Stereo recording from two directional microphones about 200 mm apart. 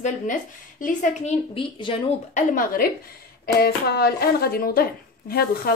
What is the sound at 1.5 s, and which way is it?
Speech, 25° left (ahead or behind).